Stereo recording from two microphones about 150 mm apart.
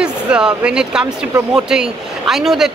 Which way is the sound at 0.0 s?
5° right (ahead or behind).